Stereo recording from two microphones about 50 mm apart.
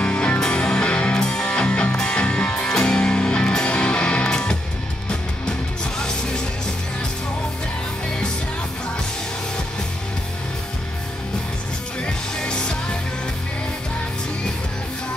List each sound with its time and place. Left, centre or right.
0.0 s music: left
5.9 s music: centre
12.4 s music: centre